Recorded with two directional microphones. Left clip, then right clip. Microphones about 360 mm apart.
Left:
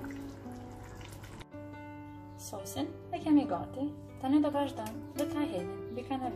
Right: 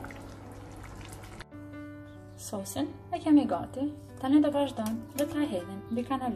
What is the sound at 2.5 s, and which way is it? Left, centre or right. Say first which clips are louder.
Speech: right 4 dB; centre.